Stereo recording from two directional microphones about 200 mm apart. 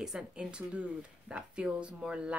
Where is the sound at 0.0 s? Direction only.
5° right (ahead or behind).